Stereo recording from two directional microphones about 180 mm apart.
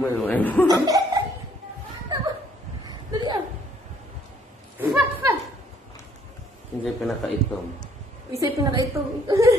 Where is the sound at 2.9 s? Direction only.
25° right (ahead or behind).